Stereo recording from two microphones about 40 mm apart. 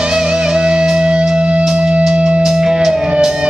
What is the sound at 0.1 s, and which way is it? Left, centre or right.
Music, centre.